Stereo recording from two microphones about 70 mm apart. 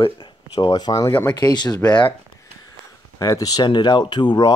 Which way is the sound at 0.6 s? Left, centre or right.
Left.